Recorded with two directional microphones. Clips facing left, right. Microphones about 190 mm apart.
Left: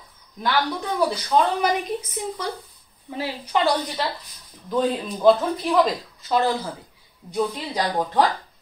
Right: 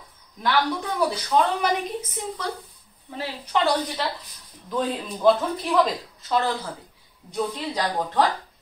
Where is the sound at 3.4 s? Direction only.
Centre (ahead or behind).